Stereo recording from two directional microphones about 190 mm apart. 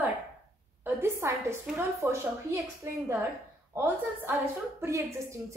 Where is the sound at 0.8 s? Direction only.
15° right (ahead or behind).